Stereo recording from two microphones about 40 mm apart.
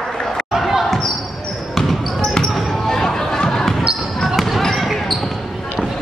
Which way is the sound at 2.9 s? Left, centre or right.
Centre.